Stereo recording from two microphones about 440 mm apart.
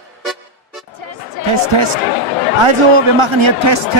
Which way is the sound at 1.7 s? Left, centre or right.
Right.